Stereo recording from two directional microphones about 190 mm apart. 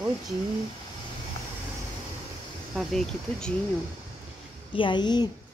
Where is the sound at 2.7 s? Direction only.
Centre (ahead or behind).